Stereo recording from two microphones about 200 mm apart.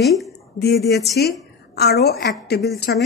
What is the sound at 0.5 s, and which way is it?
Speech, 55° left (ahead or behind).